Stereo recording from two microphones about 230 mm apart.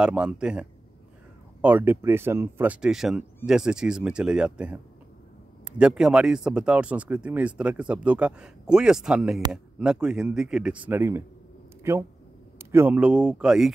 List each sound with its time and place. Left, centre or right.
0.0 s speech: centre